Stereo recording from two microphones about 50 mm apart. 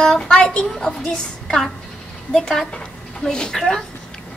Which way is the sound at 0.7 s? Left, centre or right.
Centre.